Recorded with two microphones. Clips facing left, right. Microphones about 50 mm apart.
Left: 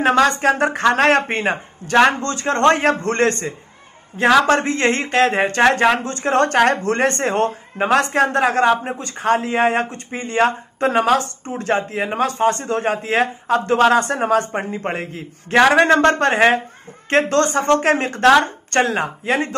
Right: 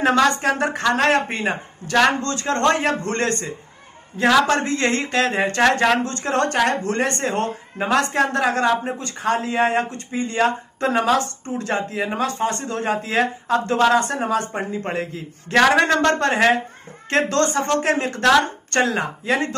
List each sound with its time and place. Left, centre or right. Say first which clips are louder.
0.4 s speech: left 4 dB; left
1.9 s a man's voice: left 3 dB; left
2.7 s speech: left 3 dB; left
5.6 s a man's voice: left 2 dB; left
6.2 s speech: left 6 dB; left
14.0 s speech: left 4 dB; left
14.5 s speech: left 2 dB; left
15.5 s a man's voice: left 3 dB; left
18.3 s a woman's voice: left 1 dB; left
18.9 s speech: left 2 dB; left